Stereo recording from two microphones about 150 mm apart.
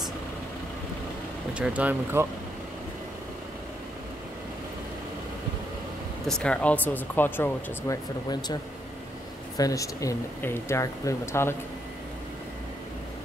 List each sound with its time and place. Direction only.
1.5 s speech: 10° right (ahead or behind)
6.2 s speech: 5° left (ahead or behind)
8.3 s speech: 30° left (ahead or behind)
9.6 s speech: 20° left (ahead or behind)